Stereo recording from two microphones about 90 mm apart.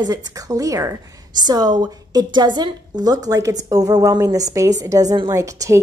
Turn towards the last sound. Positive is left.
turn(degrees=-40)  # may be behind; listen again after turning